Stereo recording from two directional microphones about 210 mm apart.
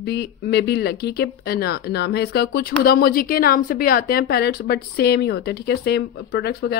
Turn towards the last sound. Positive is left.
turn(degrees=50)  # may be behind; listen again after turning